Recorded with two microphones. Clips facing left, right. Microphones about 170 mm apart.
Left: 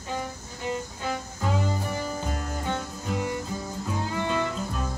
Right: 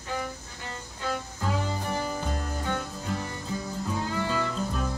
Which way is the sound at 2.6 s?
15° left (ahead or behind).